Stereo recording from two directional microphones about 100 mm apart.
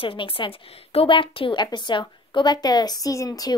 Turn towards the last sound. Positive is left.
turn(degrees=40)  # may be behind; listen again after turning